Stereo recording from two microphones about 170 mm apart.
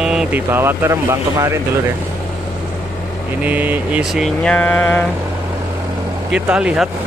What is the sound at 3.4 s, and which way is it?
Vehicle, 10° right (ahead or behind).